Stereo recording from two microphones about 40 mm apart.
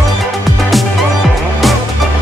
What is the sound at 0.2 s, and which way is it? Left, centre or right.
Music, centre.